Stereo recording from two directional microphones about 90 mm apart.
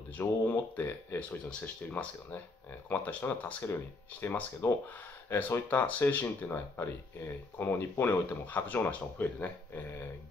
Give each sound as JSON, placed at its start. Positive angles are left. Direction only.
{"t": 0.2, "sound": "speech", "side_deg": 25}